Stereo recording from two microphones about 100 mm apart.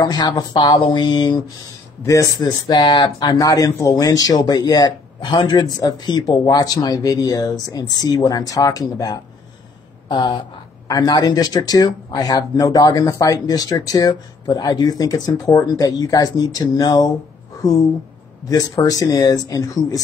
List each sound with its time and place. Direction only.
0.0 s speech: 45° left (ahead or behind)
2.0 s speech: 35° left (ahead or behind)
18.5 s speech: 35° left (ahead or behind)